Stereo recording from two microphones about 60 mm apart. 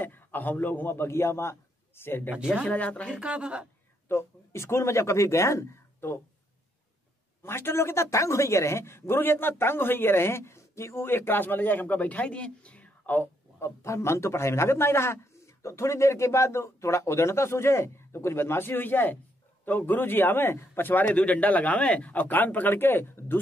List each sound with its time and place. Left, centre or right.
0.0 s a man's voice: left
2.6 s speech: left
3.2 s speech: centre
4.1 s a man's voice: left
7.4 s a man's voice: left
11.1 s a man's voice: left
13.6 s a man's voice: left